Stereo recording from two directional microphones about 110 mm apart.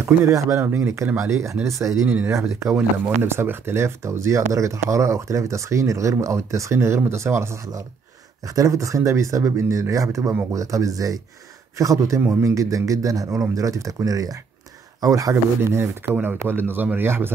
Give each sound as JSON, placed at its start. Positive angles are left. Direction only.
{"t": 0.0, "sound": "speech", "side_deg": -25}